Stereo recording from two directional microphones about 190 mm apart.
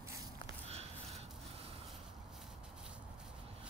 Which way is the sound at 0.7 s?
35° right (ahead or behind).